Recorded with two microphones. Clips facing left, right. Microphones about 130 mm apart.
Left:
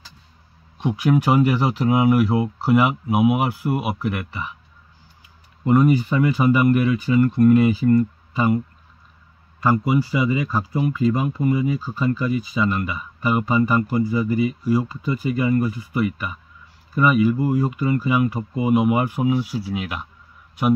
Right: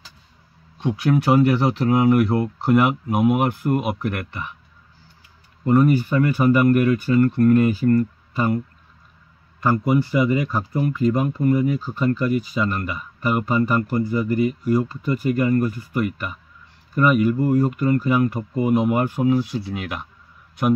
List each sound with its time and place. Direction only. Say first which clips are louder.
0.7 s speech: left 1 dB; 15° left (ahead or behind)
5.7 s speech: even; 15° left (ahead or behind)
9.7 s speech: even; 10° left (ahead or behind)
12.5 s speech: left 1 dB; 10° left (ahead or behind)